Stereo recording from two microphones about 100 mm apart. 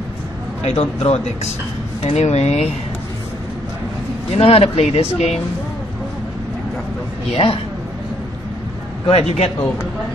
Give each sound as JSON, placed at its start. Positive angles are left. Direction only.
{"t": 0.7, "sound": "speech", "side_deg": 90}
{"t": 4.3, "sound": "speech", "side_deg": 80}
{"t": 7.3, "sound": "a man's voice", "side_deg": 75}
{"t": 9.0, "sound": "a man's voice", "side_deg": 75}